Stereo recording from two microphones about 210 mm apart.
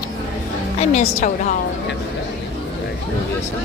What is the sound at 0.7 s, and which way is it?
Speech, 35° left (ahead or behind).